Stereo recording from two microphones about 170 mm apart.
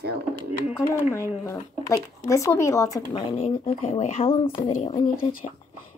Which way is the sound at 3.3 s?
35° left (ahead or behind).